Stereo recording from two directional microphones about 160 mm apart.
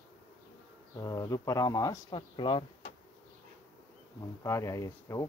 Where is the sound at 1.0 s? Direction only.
20° left (ahead or behind).